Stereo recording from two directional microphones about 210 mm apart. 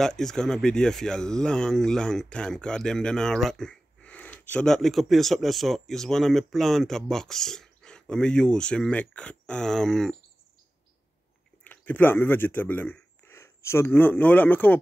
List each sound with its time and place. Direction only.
0.0 s speech: centre (ahead or behind)
11.6 s speech: 10° left (ahead or behind)